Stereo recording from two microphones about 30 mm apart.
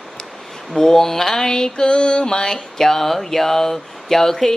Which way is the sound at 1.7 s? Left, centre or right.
Left.